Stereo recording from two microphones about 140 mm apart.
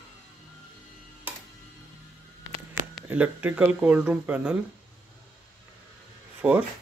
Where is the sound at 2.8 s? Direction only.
70° right (ahead or behind).